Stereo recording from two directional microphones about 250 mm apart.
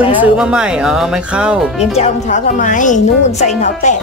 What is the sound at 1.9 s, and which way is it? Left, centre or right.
A woman's voice, left.